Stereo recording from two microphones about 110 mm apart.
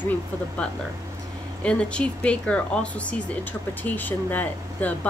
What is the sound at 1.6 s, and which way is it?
Speech, 10° left (ahead or behind).